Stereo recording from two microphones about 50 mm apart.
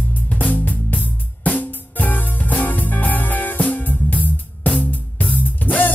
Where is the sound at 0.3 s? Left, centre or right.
Left.